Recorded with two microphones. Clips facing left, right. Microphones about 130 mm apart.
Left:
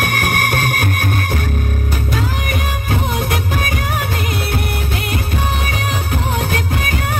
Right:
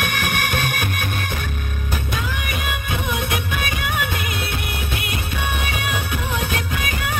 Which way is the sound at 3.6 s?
40° left (ahead or behind).